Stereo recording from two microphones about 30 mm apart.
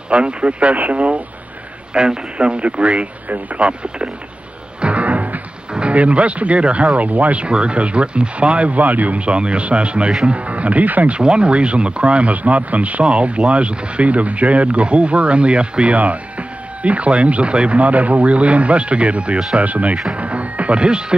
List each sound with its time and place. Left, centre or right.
0.1 s speech: right
2.0 s speech: right
4.8 s music: right
5.7 s music: right
5.9 s speech: right
7.4 s speech: right
8.7 s speech: right
9.2 s speech: right
11.1 s speech: right
15.9 s speech: right
17.7 s speech: right
19.6 s speech: right
20.2 s music: right